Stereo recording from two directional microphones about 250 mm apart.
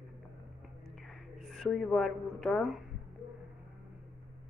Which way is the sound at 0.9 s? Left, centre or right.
Centre.